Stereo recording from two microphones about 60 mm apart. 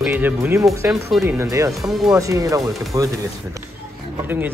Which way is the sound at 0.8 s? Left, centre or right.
Right.